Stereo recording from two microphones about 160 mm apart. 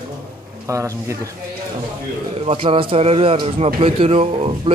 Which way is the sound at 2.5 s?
35° right (ahead or behind).